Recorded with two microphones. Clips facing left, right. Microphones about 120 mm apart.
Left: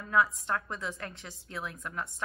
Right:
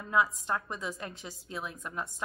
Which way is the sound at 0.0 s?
25° right (ahead or behind).